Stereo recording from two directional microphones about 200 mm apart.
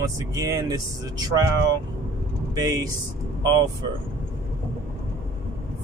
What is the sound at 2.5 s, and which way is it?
Speech, 20° right (ahead or behind).